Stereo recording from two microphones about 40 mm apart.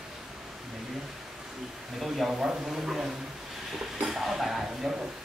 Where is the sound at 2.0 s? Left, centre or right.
Centre.